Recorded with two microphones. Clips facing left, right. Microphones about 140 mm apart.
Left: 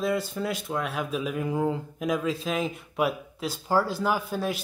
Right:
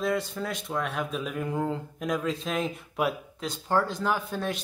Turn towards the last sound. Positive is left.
turn(degrees=5)  # may be behind; listen again after turning